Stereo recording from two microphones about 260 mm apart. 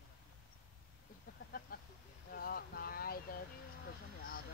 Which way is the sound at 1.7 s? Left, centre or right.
Left.